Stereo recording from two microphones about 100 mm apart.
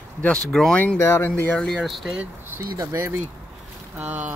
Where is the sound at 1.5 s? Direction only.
5° left (ahead or behind).